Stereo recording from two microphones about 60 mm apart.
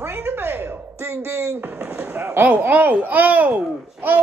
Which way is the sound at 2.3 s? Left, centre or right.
Right.